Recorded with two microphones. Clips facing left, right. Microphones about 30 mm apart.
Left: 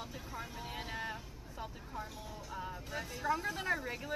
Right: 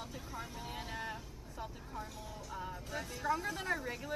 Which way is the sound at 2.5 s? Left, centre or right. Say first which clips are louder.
Even; centre.